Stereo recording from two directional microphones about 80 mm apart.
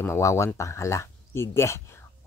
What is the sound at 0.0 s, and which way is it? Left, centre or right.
Speech, left.